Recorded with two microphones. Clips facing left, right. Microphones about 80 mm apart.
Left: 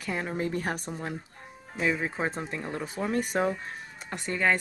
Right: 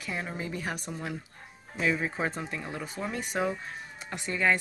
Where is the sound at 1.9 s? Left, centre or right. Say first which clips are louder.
Even; left.